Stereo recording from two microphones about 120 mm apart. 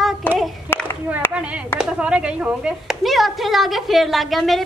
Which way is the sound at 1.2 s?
20° left (ahead or behind).